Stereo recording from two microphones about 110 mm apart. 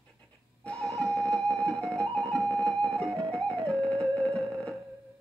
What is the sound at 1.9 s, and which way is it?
Music, 30° right (ahead or behind).